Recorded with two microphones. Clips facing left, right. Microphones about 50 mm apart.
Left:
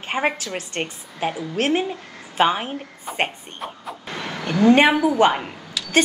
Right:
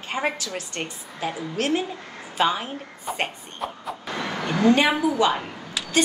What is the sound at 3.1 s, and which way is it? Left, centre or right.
Speech, centre.